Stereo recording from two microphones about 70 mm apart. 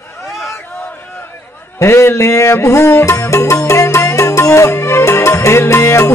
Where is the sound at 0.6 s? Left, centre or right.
Left.